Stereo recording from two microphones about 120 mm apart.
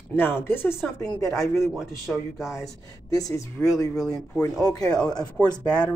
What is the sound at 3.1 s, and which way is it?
Speech, 30° left (ahead or behind).